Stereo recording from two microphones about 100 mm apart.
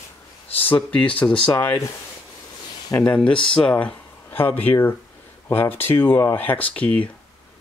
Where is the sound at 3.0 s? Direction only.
10° left (ahead or behind).